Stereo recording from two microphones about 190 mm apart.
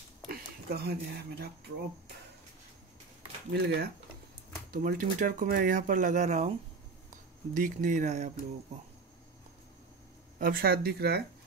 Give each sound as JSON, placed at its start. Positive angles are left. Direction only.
{"t": 0.3, "sound": "speech", "side_deg": -55}
{"t": 3.5, "sound": "speech", "side_deg": -60}
{"t": 4.6, "sound": "speech", "side_deg": -45}
{"t": 10.4, "sound": "speech", "side_deg": -50}